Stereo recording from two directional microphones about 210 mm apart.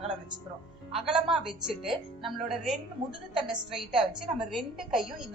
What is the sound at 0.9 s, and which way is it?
A woman's voice, centre (ahead or behind).